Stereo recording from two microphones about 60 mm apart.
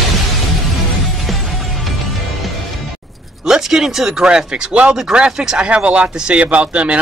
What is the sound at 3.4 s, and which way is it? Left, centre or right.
Speech, centre.